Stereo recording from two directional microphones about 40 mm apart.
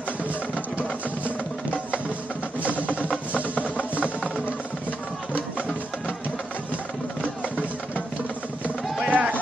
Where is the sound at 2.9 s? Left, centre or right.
Left.